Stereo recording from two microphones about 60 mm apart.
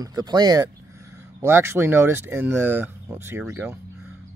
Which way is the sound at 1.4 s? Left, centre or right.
Right.